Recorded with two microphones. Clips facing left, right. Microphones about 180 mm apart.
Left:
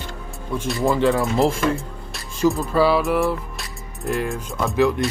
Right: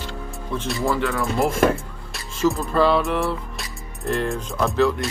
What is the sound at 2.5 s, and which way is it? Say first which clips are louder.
Speech: even; centre (ahead or behind).